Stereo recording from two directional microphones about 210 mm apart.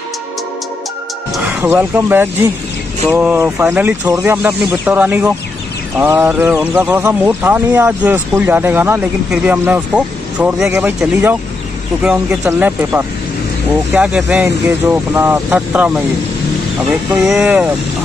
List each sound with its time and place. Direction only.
1.3 s speech: 5° right (ahead or behind)
17.1 s speech: 5° right (ahead or behind)